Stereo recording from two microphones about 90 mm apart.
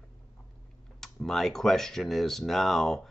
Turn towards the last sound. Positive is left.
turn(degrees=5)  # may be behind; listen again after turning